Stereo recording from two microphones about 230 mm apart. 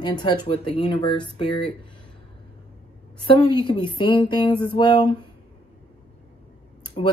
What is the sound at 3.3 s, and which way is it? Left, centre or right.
Speech, left.